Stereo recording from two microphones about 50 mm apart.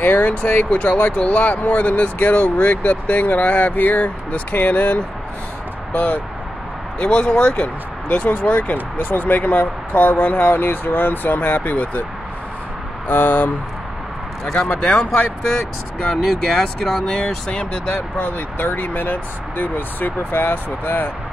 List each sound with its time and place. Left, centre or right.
0.0 s speech: left
7.0 s speech: left
13.1 s speech: left
14.4 s speech: centre
16.1 s speech: centre
17.2 s speech: left
17.9 s speech: left